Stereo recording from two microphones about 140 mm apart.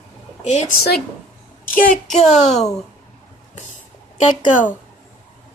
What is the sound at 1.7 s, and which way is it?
Speech, 75° left (ahead or behind).